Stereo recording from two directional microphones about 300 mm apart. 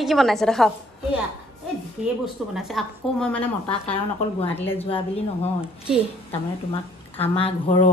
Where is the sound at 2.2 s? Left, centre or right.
Centre.